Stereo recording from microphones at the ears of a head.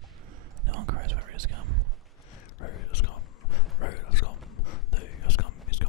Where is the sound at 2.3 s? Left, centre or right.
Left.